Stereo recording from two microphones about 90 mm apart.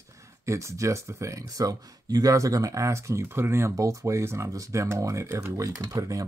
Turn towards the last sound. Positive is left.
turn(degrees=-35)  # may be behind; listen again after turning